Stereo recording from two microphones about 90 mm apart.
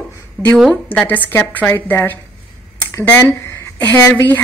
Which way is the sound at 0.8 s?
20° left (ahead or behind).